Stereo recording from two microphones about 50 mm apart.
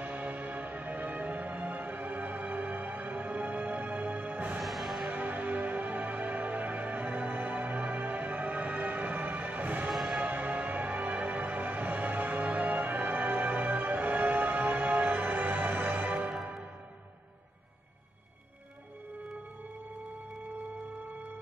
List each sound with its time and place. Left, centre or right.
0.0 s music: right
4.6 s music: centre
5.0 s music: right
16.2 s music: centre